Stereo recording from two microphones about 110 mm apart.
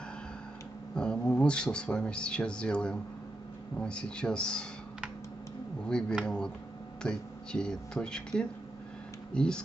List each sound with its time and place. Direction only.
0.9 s speech: 5° left (ahead or behind)
5.9 s speech: 5° left (ahead or behind)